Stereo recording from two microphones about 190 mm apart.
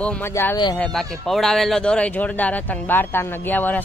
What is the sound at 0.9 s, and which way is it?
Speech, centre (ahead or behind).